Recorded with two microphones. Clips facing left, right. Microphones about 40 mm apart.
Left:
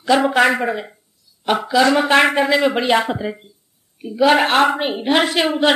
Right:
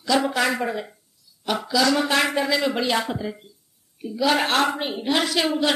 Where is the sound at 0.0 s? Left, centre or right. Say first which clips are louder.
Left 7 dB; left.